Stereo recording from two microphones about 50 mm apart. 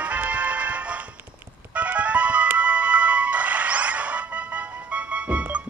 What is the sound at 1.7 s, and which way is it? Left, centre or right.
Music, right.